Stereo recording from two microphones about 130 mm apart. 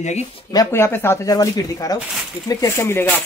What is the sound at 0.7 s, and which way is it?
Speech, 20° left (ahead or behind).